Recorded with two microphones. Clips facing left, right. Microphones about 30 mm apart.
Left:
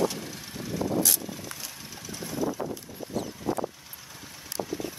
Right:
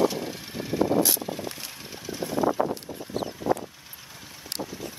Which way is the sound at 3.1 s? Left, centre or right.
Right.